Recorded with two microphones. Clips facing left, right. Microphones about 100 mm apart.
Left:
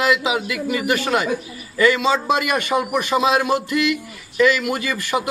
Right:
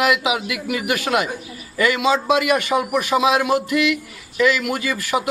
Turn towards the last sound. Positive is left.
turn(degrees=0)  # may be behind; listen again after turning